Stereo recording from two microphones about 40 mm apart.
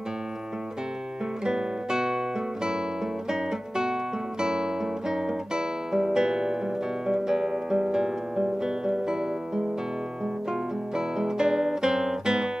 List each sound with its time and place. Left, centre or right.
1.4 s guitar: centre
7.1 s music: centre
10.5 s guitar: centre